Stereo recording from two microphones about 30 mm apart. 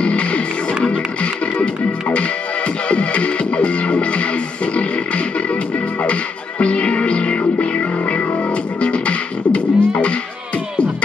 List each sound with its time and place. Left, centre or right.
0.0 s music: left
2.1 s music: left
6.6 s music: left